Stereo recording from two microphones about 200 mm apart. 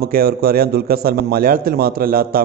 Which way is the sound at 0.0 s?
50° right (ahead or behind).